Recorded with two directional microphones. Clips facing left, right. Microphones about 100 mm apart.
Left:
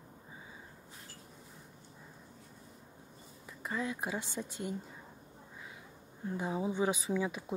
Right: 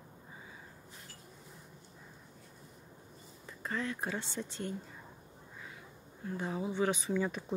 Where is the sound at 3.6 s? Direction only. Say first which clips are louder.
Even; 15° left (ahead or behind).